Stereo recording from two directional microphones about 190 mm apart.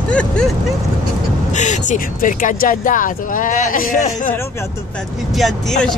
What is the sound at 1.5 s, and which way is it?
Speech, 40° left (ahead or behind).